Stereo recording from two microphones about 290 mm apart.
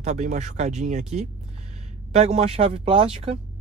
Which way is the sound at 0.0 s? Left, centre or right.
Right.